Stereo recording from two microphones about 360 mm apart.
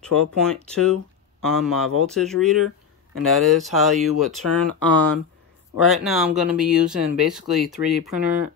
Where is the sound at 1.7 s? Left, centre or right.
Centre.